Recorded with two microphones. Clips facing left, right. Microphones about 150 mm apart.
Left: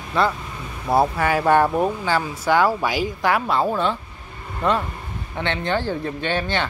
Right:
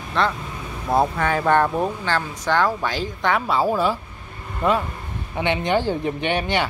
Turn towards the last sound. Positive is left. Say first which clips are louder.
# right 1 dB
turn(degrees=-15)  # may be behind; listen again after turning